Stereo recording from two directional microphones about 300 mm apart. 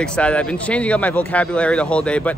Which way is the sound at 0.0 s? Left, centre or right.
Centre.